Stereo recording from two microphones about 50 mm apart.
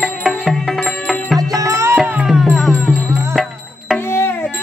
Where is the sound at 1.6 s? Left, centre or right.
Right.